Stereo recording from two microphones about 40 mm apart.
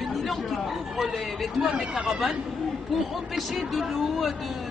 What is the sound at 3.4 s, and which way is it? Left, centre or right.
Speech, centre.